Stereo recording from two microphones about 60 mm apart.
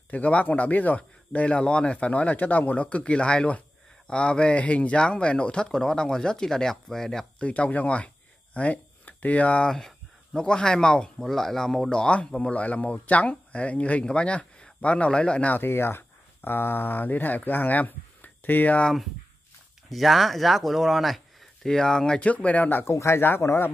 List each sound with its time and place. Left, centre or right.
0.1 s speech: left; by 7.2 s centre
7.3 s speech: left
9.7 s speech: centre
15.5 s speech: left
19.9 s speech: centre; by 22.9 s left
22.9 s speech: left